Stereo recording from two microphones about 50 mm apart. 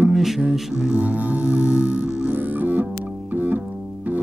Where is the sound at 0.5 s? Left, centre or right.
Centre.